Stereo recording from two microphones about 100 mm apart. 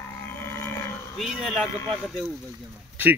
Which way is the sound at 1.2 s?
Centre (ahead or behind).